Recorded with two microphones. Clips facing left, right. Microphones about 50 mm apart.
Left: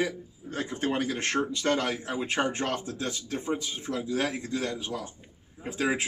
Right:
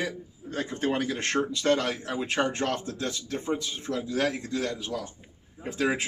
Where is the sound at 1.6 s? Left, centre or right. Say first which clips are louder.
Right 2 dB; left.